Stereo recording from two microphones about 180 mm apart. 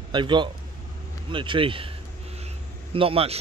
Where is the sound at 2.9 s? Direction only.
30° right (ahead or behind).